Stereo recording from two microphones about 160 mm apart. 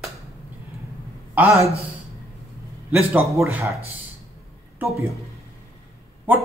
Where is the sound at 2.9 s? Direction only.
10° right (ahead or behind).